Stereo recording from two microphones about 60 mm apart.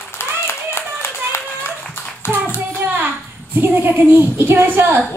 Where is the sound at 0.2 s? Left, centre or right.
Left.